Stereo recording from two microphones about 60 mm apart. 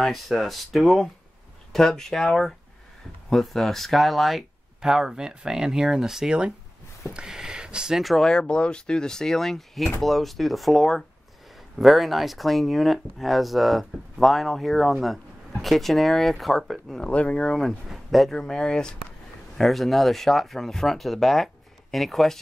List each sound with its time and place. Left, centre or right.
0.0 s speech: centre
7.2 s a sound: centre
8.0 s speech: centre
17.0 s speech: left
17.8 s speech: centre
18.3 s speech: centre
19.5 s speech: centre